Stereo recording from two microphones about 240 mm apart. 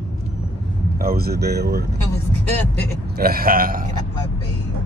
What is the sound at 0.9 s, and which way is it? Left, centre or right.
Speech, right.